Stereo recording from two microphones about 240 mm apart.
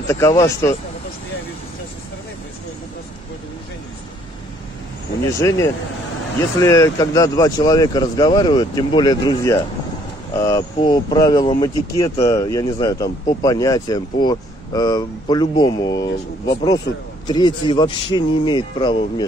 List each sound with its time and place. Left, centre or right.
0.1 s speech: centre
5.3 s speech: centre